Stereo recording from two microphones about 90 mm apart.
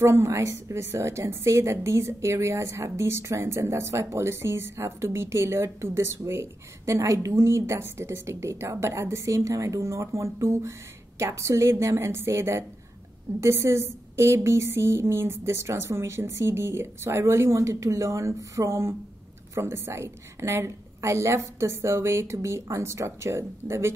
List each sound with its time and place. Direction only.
0.0 s a woman's voice: 30° right (ahead or behind)